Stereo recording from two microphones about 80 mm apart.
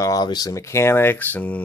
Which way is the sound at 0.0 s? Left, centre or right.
Left.